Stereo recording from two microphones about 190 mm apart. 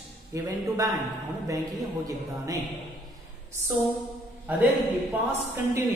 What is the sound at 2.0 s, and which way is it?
Speech, 15° right (ahead or behind).